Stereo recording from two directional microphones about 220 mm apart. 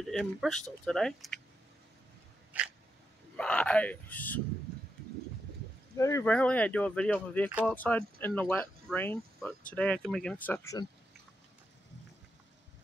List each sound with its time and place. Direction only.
0.1 s speech: centre (ahead or behind)
2.5 s a sound: 5° right (ahead or behind)
3.3 s speech: 5° left (ahead or behind)
5.9 s speech: 15° left (ahead or behind)